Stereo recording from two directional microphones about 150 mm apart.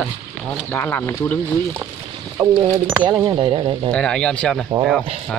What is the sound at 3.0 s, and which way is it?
Speech, 30° right (ahead or behind).